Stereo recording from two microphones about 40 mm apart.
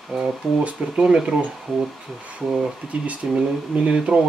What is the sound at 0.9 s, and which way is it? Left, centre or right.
Speech, right.